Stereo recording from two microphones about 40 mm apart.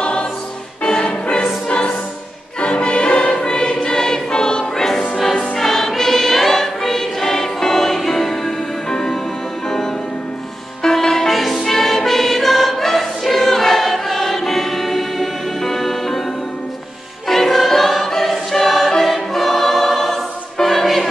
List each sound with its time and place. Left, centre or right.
0.0 s music: left
2.6 s choir: left
5.1 s music: centre
10.8 s music: centre
11.6 s choir: centre
17.3 s choir: centre